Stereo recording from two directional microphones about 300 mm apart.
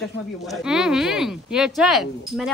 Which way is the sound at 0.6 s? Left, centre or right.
Centre.